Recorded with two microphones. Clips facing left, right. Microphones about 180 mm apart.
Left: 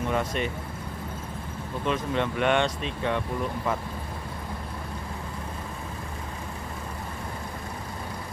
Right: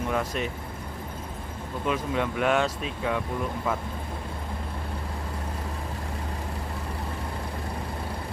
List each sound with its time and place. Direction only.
0.1 s speech: centre (ahead or behind)
1.9 s speech: 5° right (ahead or behind)